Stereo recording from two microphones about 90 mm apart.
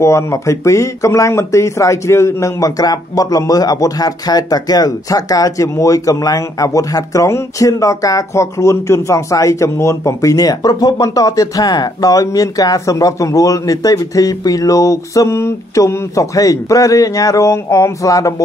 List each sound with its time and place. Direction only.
0.0 s speech: 35° left (ahead or behind)